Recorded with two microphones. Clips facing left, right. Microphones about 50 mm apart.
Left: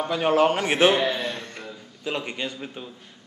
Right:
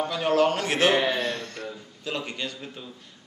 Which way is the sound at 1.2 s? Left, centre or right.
Left.